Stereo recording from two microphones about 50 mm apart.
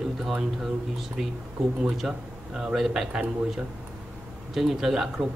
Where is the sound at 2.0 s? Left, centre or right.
Centre.